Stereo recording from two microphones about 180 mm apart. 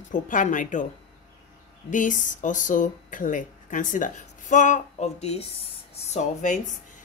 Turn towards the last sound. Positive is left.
turn(degrees=45)  # may be behind; listen again after turning